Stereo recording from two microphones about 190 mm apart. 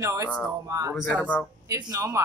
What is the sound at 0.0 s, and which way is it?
A man's voice, 15° right (ahead or behind).